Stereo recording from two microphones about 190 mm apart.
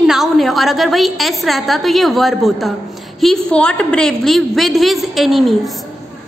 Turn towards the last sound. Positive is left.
turn(degrees=0)  # may be behind; listen again after turning